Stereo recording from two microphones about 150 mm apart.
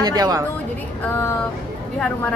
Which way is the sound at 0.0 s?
25° right (ahead or behind).